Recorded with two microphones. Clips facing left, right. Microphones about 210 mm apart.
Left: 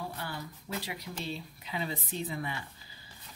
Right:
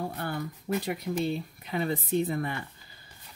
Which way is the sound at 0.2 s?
50° right (ahead or behind).